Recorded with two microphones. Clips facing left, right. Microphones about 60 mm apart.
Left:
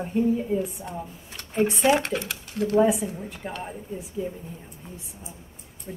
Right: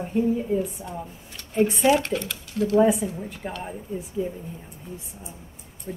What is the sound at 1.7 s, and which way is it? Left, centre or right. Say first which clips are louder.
Speech: right 1 dB; left.